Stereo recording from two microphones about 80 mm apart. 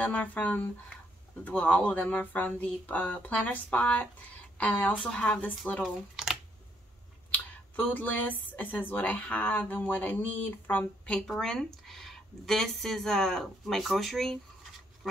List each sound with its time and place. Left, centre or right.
0.0 s speech: centre
5.8 s speech: centre
7.2 s speech: left
11.1 s speech: centre